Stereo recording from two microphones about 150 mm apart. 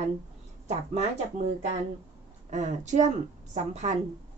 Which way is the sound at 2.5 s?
50° right (ahead or behind).